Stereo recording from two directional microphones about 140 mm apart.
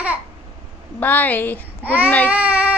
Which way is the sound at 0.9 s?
15° left (ahead or behind).